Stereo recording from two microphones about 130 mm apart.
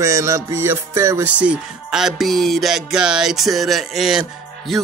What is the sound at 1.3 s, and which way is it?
Music, 10° right (ahead or behind).